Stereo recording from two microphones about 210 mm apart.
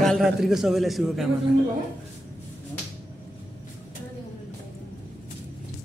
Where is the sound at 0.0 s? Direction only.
Centre (ahead or behind).